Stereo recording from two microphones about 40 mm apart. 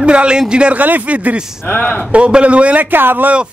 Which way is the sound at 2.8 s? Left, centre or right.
Right.